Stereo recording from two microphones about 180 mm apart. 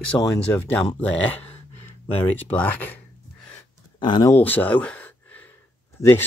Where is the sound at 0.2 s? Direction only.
10° left (ahead or behind).